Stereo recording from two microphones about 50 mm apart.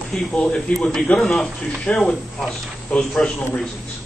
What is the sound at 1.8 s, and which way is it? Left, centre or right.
Speech, left.